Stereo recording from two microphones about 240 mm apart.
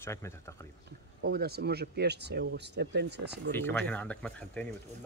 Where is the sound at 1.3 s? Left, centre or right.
Right.